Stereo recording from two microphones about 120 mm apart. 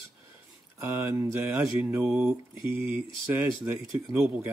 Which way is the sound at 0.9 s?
20° right (ahead or behind).